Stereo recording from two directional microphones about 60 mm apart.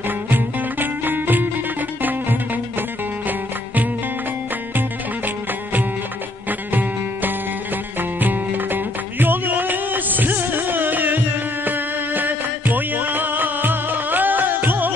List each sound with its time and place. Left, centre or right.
0.3 s music: right